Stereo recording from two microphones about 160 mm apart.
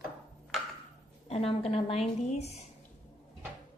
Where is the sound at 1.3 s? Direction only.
40° left (ahead or behind).